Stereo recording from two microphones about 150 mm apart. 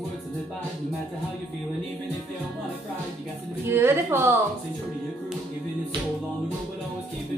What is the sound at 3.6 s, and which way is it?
Speech, 15° right (ahead or behind).